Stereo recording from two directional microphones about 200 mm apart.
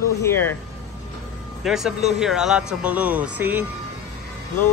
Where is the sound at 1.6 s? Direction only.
Centre (ahead or behind).